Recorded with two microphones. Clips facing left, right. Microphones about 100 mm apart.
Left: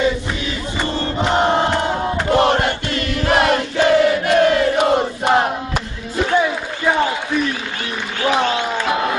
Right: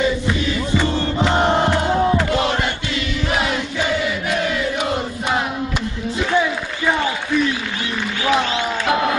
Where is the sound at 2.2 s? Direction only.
50° left (ahead or behind).